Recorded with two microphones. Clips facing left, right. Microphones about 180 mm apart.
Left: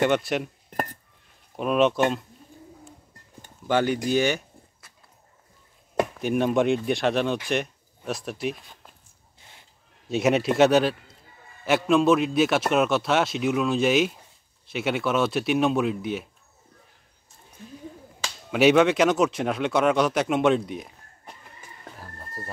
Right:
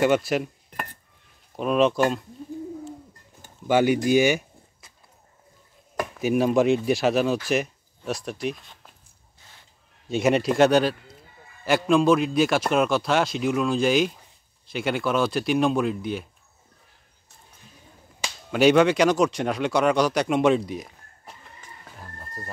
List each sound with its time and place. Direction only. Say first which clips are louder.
0.0 s a man's voice: right 2 dB; 5° right (ahead or behind)
1.6 s a man's voice: right 1 dB; centre (ahead or behind)
3.4 s a sound: right 3 dB; 10° right (ahead or behind)
6.1 s a man's voice: right 4 dB; 5° right (ahead or behind)
10.0 s a man's voice: right 1 dB; centre (ahead or behind)
18.5 s speech: right 1 dB; centre (ahead or behind)